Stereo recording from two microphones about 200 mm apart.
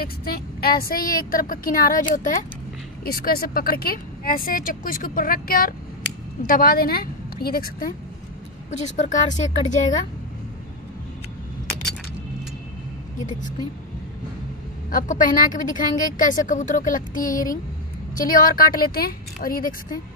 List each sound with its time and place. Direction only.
0.0 s speech: 50° left (ahead or behind)
8.6 s a woman's voice: 35° left (ahead or behind)
14.9 s a woman's voice: 40° left (ahead or behind)